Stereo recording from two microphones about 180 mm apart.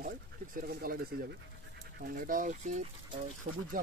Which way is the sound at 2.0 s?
55° right (ahead or behind).